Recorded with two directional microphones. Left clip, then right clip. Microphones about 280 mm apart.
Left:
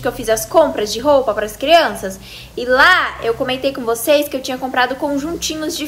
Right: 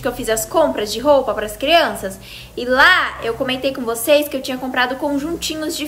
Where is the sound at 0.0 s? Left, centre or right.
Centre.